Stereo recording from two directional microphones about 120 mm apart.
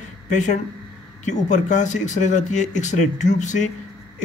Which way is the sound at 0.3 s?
90° left.